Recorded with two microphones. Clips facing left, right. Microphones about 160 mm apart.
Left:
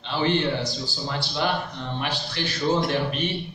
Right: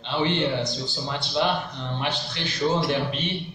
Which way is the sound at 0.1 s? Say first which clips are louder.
Left 1 dB; 20° right (ahead or behind).